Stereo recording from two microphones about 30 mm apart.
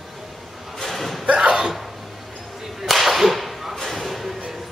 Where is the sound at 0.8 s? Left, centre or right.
Centre.